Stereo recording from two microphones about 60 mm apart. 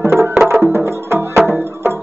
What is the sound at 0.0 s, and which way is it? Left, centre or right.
Music, right.